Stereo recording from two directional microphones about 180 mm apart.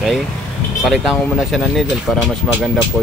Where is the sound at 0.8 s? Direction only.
Centre (ahead or behind).